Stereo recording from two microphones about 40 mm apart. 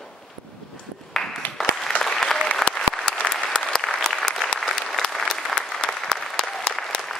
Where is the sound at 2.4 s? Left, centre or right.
Left.